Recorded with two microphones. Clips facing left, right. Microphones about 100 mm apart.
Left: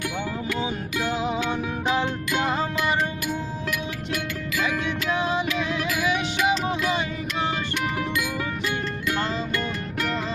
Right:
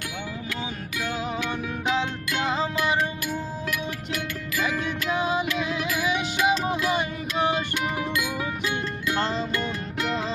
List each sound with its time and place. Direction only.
0.6 s music: 30° left (ahead or behind)
1.2 s music: 10° left (ahead or behind)
4.1 s music: 5° right (ahead or behind)
5.9 s music: 30° right (ahead or behind)
6.7 s music: 15° right (ahead or behind)